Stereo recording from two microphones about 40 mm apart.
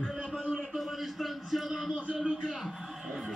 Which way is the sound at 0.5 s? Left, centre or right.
Centre.